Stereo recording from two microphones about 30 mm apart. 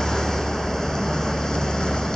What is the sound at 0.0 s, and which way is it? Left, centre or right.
Vehicle, centre.